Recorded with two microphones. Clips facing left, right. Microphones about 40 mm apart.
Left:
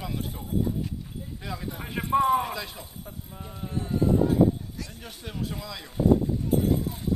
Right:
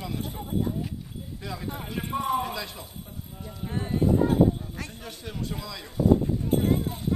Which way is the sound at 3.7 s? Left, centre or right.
Right.